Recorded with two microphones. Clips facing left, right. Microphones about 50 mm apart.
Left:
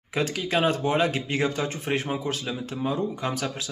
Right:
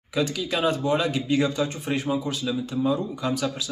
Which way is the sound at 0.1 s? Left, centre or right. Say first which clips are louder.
Even; left.